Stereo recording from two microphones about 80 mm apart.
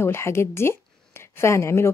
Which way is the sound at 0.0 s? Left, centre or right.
Left.